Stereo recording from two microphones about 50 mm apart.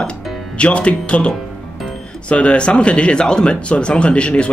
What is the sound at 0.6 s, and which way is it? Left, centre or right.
Speech, left.